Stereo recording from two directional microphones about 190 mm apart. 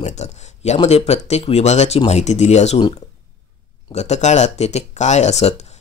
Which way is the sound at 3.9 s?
35° left (ahead or behind).